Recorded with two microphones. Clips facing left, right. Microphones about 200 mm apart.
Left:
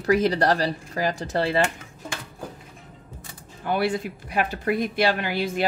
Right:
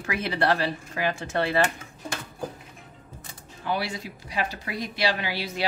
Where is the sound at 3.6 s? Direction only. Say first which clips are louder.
Left 5 dB; 55° left (ahead or behind).